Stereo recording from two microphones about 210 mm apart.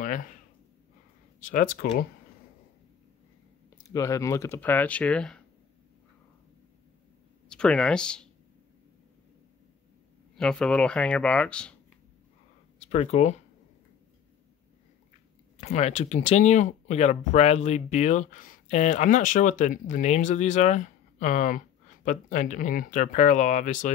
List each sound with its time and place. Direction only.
0.0 s a sound: 40° left (ahead or behind)
1.5 s speech: 40° left (ahead or behind)
3.8 s speech: 15° left (ahead or behind)
7.4 s speech: 5° left (ahead or behind)
10.3 s speech: 5° left (ahead or behind)
12.7 s speech: 30° left (ahead or behind)
15.5 s speech: 30° left (ahead or behind)